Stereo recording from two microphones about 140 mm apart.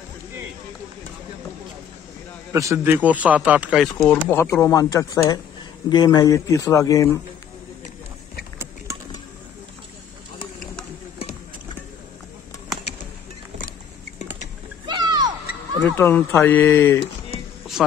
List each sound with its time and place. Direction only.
2.5 s a man's voice: 20° right (ahead or behind)
4.1 s speech: 15° left (ahead or behind)
14.9 s a sound: 30° right (ahead or behind)
16.0 s speech: 15° left (ahead or behind)